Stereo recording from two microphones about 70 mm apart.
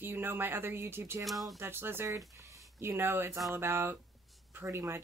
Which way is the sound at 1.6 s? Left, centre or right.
Right.